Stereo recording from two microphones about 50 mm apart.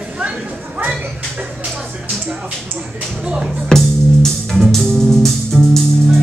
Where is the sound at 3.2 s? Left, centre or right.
Centre.